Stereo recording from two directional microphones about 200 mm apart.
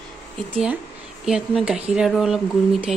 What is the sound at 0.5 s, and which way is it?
Speech, 5° right (ahead or behind).